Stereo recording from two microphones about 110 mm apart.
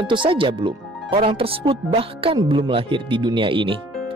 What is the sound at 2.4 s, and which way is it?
Speech, 50° right (ahead or behind).